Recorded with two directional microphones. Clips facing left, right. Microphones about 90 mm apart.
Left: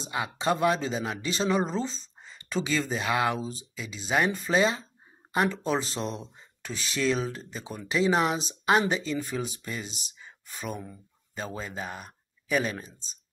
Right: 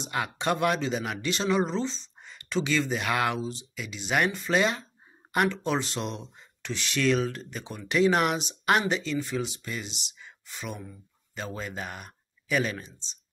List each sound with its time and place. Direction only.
0.1 s speech: 30° left (ahead or behind)